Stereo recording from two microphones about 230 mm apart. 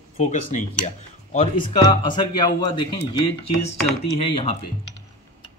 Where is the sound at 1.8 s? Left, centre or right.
Centre.